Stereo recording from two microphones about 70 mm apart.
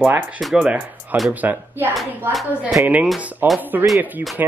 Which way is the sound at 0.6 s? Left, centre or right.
Centre.